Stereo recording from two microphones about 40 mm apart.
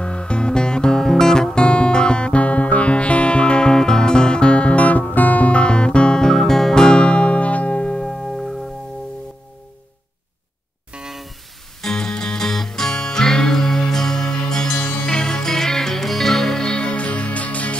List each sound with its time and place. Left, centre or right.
0.0 s music: left
8.1 s music: centre
11.8 s music: centre; by 17.7 s left